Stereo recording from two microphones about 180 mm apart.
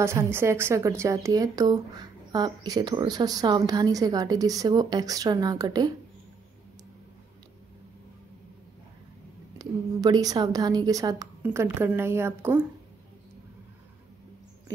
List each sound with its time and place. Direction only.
0.0 s speech: 15° right (ahead or behind)
9.6 s speech: 20° right (ahead or behind)